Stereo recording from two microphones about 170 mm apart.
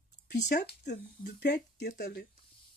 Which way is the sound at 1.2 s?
70° left (ahead or behind).